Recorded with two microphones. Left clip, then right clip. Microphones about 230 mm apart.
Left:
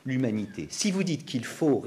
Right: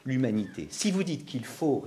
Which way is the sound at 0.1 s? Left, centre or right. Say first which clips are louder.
Even; centre.